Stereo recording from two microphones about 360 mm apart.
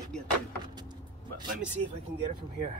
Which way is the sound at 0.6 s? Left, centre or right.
Centre.